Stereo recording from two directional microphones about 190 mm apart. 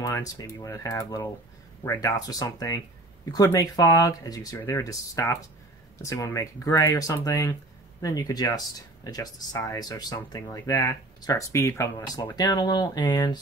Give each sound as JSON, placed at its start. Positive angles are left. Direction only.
{"t": 0.0, "sound": "speech", "side_deg": 20}